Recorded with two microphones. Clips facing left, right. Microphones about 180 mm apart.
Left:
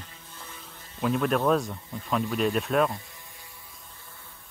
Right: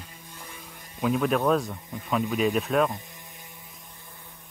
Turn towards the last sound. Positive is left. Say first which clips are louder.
# right 1 dB
turn(degrees=-15)  # may be behind; listen again after turning